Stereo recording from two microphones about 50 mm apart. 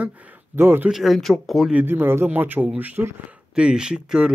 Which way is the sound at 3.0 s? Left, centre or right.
Right.